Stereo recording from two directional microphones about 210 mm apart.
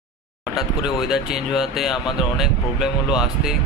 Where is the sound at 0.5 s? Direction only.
Centre (ahead or behind).